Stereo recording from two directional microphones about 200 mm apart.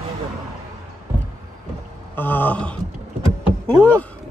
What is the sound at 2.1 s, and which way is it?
Speech, 10° left (ahead or behind).